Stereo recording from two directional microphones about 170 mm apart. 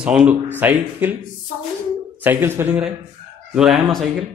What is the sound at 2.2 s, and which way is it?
A man's voice, 15° right (ahead or behind).